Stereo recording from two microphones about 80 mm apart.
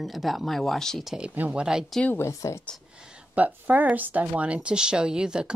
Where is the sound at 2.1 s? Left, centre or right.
Left.